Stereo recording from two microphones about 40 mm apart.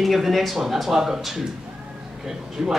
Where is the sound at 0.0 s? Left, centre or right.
Centre.